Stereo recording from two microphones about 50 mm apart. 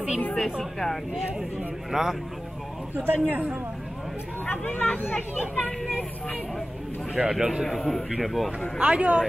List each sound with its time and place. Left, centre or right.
0.4 s speech: centre
1.9 s speech: centre
3.0 s a man's voice: right
4.5 s speech: left
7.2 s a man's voice: centre
7.6 s speech: centre
8.5 s speech: right